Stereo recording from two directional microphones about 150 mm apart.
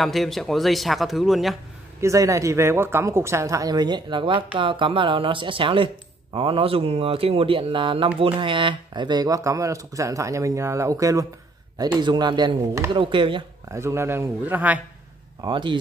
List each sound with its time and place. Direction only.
0.0 s speech: centre (ahead or behind)
2.0 s speech: 20° right (ahead or behind)
13.7 s a man's voice: 20° right (ahead or behind)
15.4 s speech: 30° right (ahead or behind)